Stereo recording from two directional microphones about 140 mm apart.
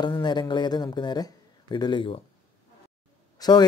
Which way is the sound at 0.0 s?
30° left (ahead or behind).